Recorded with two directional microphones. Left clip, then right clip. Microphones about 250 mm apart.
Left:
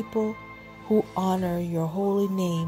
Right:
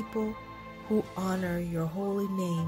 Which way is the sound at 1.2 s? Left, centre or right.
Centre.